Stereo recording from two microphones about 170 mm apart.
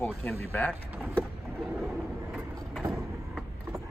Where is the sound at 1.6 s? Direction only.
Centre (ahead or behind).